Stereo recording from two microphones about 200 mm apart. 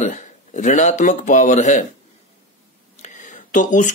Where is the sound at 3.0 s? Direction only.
40° left (ahead or behind).